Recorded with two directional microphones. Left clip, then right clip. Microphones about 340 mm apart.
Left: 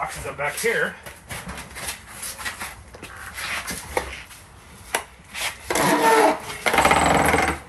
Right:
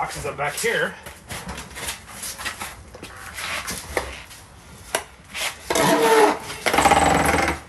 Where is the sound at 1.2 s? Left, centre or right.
Centre.